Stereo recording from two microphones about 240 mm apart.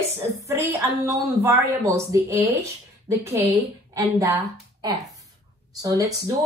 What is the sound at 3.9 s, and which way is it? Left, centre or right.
A woman's voice, centre.